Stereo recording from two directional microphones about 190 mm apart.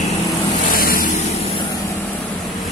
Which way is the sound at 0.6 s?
50° left (ahead or behind).